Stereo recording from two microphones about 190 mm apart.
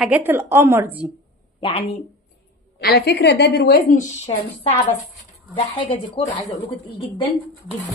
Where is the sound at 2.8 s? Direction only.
60° left (ahead or behind).